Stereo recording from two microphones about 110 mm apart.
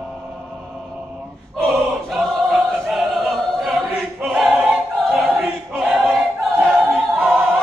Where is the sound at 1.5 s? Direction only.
Centre (ahead or behind).